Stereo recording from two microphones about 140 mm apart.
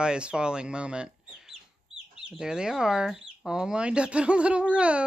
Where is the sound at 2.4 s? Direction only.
5° right (ahead or behind).